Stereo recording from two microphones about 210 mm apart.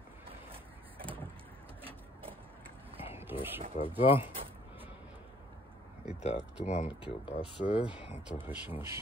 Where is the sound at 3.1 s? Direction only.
10° right (ahead or behind).